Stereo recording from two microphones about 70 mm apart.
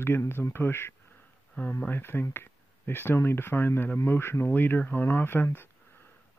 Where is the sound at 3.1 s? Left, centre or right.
Left.